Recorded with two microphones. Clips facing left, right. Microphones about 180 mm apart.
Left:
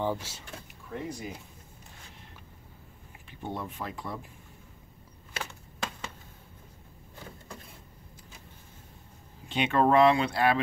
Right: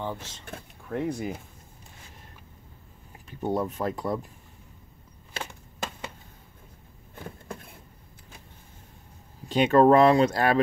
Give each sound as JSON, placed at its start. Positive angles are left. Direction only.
{"t": 0.0, "sound": "speech", "side_deg": 10}
{"t": 0.5, "sound": "a sound", "side_deg": -55}
{"t": 3.3, "sound": "speech", "side_deg": -40}
{"t": 9.5, "sound": "speech", "side_deg": -40}